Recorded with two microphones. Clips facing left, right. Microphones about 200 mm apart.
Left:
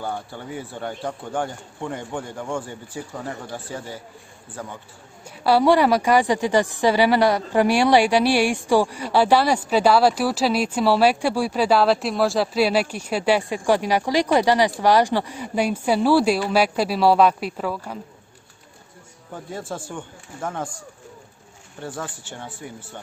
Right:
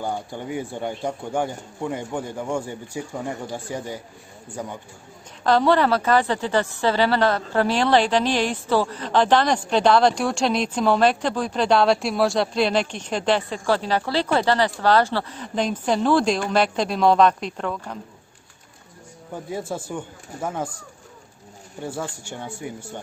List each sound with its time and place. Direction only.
0.0 s speech: 15° right (ahead or behind)
5.4 s a woman's voice: 10° left (ahead or behind)
19.3 s speech: 10° right (ahead or behind)
21.8 s speech: 10° right (ahead or behind)